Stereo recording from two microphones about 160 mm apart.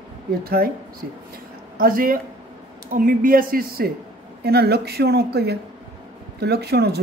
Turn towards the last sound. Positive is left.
turn(degrees=-90)